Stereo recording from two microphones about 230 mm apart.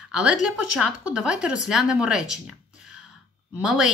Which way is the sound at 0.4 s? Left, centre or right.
Right.